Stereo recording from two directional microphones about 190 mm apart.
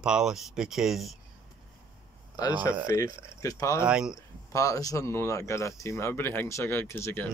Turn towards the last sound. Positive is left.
turn(degrees=10)  # may be behind; listen again after turning